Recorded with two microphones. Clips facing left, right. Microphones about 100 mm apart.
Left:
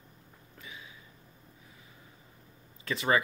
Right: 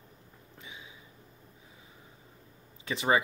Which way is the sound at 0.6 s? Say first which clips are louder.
Left 1 dB; 20° right (ahead or behind).